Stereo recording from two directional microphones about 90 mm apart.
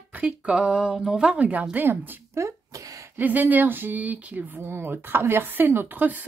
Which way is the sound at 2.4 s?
40° right (ahead or behind).